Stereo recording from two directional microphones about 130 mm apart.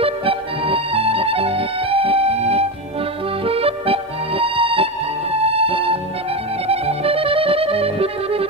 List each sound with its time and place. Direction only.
0.0 s music: 45° right (ahead or behind)